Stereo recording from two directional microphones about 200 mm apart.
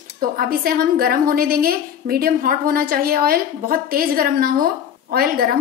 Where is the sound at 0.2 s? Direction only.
50° right (ahead or behind).